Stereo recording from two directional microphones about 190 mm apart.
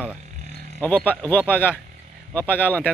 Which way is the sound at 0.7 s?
10° left (ahead or behind).